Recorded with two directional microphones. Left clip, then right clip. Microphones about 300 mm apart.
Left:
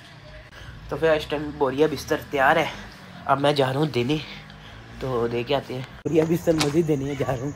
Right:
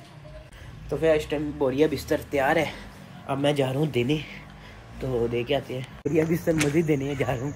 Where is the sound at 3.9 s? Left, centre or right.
Centre.